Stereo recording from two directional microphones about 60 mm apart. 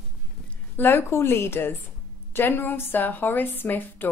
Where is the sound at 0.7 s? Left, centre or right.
Left.